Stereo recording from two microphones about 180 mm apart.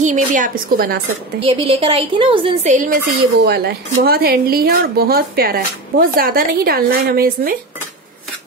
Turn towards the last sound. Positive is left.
turn(degrees=-55)  # may be behind; listen again after turning